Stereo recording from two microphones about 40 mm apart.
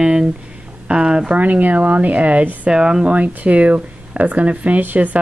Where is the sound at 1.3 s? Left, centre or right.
Right.